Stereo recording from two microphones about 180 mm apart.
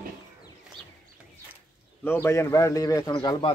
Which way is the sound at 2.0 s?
15° left (ahead or behind).